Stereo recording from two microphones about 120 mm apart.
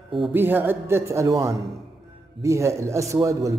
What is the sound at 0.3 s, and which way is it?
A man's voice, 15° right (ahead or behind).